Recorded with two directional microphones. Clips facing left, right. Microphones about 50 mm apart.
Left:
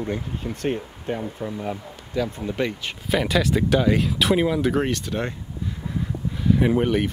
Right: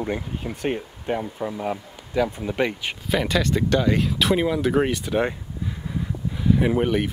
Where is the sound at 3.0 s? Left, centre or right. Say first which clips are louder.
Left 1 dB; centre.